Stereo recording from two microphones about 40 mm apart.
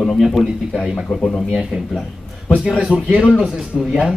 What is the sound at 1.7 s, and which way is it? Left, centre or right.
Speech, centre.